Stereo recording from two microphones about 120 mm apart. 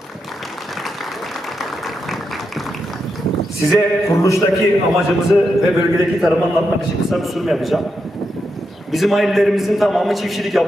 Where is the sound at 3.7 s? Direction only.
20° left (ahead or behind).